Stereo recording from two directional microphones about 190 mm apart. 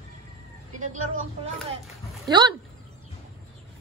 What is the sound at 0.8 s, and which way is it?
Speech, 40° right (ahead or behind).